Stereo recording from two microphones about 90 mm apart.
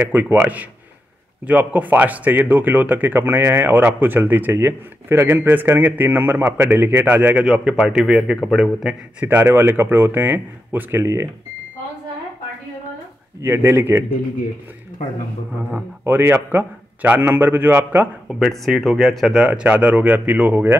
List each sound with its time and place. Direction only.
0.1 s speech: 20° right (ahead or behind)
7.4 s a man's voice: 10° right (ahead or behind)
9.2 s speech: 25° right (ahead or behind)
13.4 s speech: 25° right (ahead or behind)
16.0 s speech: 25° right (ahead or behind)
18.3 s speech: 5° right (ahead or behind)